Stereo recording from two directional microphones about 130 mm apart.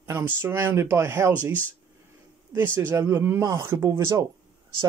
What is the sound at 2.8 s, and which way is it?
Speech, 20° right (ahead or behind).